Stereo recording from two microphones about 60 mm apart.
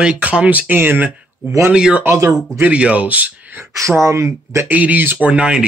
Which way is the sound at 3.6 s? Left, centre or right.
Right.